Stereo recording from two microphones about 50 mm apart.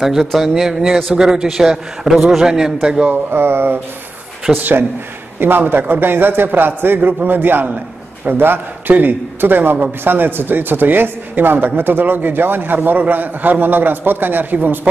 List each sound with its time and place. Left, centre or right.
0.0 s a man's voice: centre
3.1 s a man's voice: right